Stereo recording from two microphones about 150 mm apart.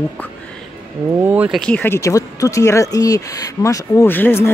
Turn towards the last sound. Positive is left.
turn(degrees=15)  # may be behind; listen again after turning